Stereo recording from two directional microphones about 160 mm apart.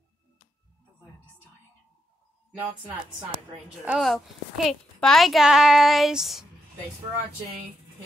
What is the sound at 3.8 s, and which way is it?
A woman's voice, centre (ahead or behind).